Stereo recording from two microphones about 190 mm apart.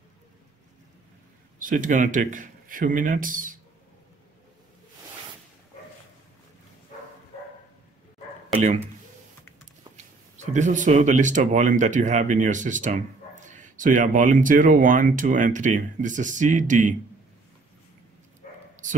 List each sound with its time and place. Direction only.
1.6 s speech: 45° right (ahead or behind)
10.3 s speech: 40° right (ahead or behind)
18.4 s bow-wow: 45° left (ahead or behind)